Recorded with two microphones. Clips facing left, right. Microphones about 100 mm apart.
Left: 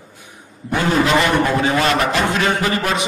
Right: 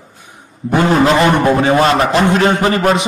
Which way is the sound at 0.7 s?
40° right (ahead or behind).